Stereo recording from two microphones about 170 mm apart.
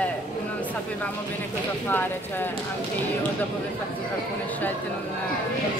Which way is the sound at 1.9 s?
10° left (ahead or behind).